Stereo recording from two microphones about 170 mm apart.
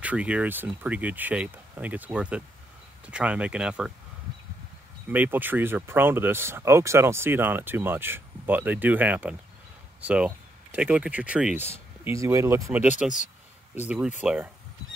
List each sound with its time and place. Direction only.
0.0 s speech: 5° right (ahead or behind)
5.1 s speech: 10° right (ahead or behind)